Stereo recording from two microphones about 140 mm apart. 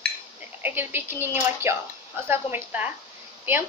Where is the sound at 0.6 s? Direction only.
15° right (ahead or behind).